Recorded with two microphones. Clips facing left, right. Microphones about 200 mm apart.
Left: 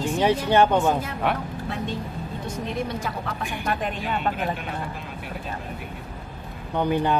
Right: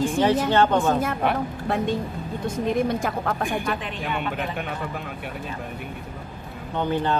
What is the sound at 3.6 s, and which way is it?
Speech, 45° left (ahead or behind).